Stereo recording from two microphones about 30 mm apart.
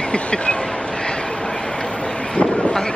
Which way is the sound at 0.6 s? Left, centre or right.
Left.